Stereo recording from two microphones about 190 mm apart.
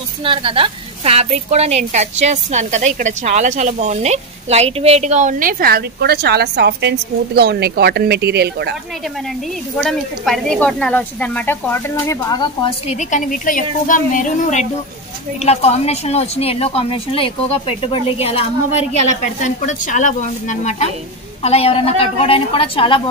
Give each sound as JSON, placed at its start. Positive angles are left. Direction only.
{"t": 0.2, "sound": "a woman's voice", "side_deg": -25}
{"t": 9.8, "sound": "a woman's voice", "side_deg": 0}
{"t": 12.8, "sound": "a woman's voice", "side_deg": 40}